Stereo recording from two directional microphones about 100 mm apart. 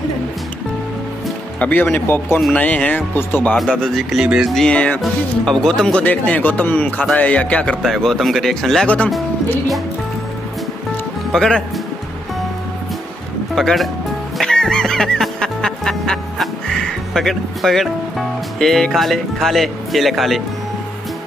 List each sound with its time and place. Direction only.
1.6 s speech: 15° left (ahead or behind)
3.5 s speech: 5° left (ahead or behind)
4.6 s speech: 10° left (ahead or behind)
8.8 s speech: 15° left (ahead or behind)
11.3 s speech: 5° left (ahead or behind)
13.6 s speech: centre (ahead or behind)
14.4 s music: 5° left (ahead or behind)
18.6 s speech: 5° left (ahead or behind)